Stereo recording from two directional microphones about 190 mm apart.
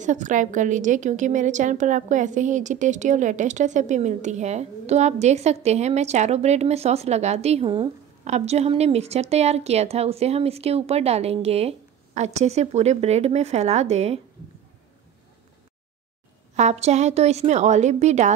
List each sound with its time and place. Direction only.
0.0 s a woman's voice: 40° right (ahead or behind)
16.5 s a woman's voice: 35° right (ahead or behind)